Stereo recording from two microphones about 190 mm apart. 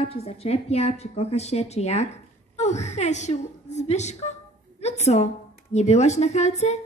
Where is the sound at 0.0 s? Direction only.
30° left (ahead or behind).